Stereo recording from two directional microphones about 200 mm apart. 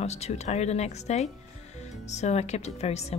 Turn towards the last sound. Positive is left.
turn(degrees=30)  # may be behind; listen again after turning